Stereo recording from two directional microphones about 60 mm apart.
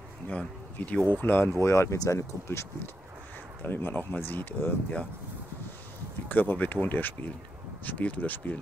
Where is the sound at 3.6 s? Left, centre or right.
Left.